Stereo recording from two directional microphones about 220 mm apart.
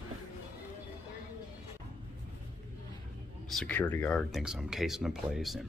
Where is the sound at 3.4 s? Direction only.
5° left (ahead or behind).